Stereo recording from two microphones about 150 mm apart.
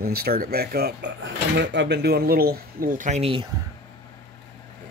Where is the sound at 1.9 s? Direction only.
90° right; by 3.4 s 40° right (ahead or behind).